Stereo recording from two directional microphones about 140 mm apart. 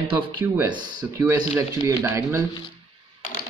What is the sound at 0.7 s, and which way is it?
Speech, 30° right (ahead or behind).